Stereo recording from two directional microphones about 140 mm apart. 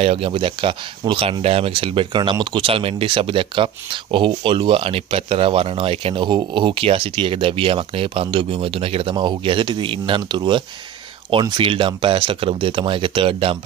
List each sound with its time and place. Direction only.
0.0 s speech: 45° right (ahead or behind)